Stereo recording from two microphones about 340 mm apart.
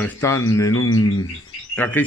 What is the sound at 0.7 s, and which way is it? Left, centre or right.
Speech, left.